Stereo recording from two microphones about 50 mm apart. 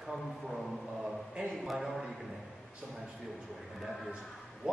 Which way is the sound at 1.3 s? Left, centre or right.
Right.